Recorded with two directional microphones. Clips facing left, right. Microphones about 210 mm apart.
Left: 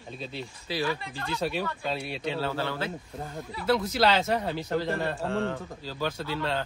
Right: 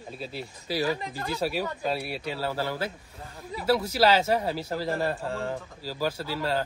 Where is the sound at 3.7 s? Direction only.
10° right (ahead or behind).